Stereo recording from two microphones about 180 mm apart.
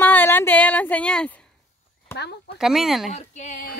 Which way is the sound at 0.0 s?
10° left (ahead or behind).